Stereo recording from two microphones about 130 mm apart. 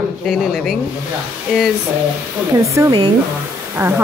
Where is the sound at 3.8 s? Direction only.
15° right (ahead or behind).